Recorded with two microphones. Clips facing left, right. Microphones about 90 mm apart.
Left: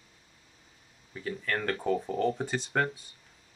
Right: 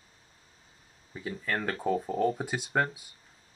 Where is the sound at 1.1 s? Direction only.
10° right (ahead or behind).